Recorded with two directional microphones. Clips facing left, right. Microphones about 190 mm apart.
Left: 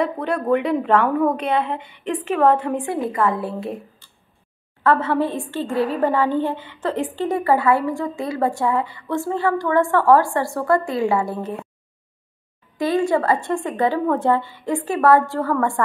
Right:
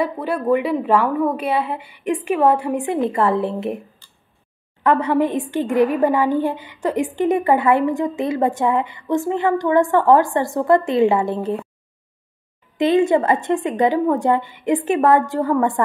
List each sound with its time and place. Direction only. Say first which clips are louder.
0.0 s a woman's voice: right 1 dB; 5° right (ahead or behind); by 3.7 s 20° right (ahead or behind)
4.8 s a woman's voice: right 2 dB; 15° right (ahead or behind)
12.7 s a woman's voice: right 4 dB; 20° right (ahead or behind)